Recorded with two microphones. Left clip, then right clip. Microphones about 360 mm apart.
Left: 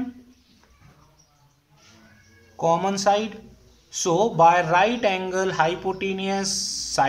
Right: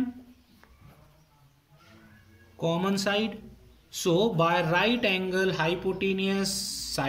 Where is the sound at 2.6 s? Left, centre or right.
Centre.